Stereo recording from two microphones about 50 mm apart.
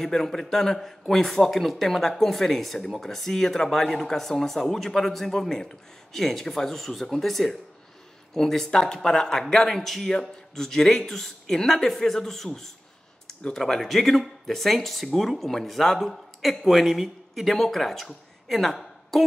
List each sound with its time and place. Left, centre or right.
0.0 s a man's voice: centre